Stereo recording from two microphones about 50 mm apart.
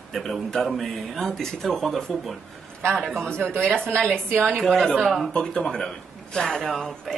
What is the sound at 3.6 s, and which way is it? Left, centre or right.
A woman's voice, centre.